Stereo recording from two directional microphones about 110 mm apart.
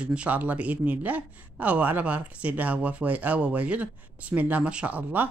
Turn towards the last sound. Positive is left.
turn(degrees=-15)  # may be behind; listen again after turning